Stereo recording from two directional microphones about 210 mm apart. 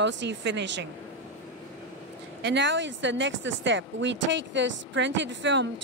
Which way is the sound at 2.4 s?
60° right (ahead or behind).